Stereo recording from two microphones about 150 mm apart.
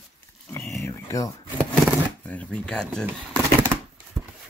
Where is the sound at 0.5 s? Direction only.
20° left (ahead or behind).